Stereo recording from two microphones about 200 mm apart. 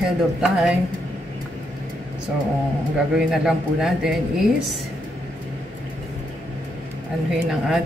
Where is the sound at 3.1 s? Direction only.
Centre (ahead or behind).